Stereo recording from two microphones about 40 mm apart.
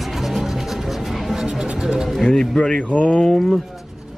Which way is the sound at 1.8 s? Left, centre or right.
Centre.